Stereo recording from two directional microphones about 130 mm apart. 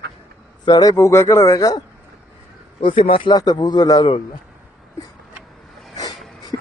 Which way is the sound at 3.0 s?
40° left (ahead or behind).